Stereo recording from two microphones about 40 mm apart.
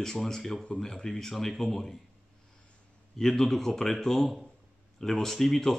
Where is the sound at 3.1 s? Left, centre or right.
Centre.